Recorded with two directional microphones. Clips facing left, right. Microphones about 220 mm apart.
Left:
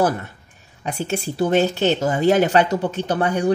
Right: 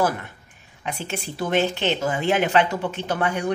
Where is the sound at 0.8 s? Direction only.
35° left (ahead or behind).